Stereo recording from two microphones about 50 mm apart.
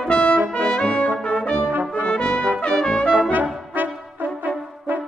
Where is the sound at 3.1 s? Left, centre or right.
Right.